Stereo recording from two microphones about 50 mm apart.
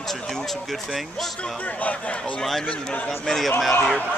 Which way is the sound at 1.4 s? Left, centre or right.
Left.